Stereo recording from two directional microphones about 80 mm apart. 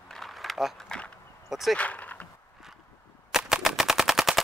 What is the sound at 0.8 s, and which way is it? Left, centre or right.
Speech, centre.